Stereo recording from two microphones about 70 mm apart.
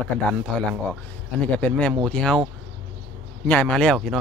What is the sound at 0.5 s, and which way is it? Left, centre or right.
Speech, centre.